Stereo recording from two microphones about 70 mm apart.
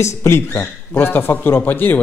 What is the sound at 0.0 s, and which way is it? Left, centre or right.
Speech, left.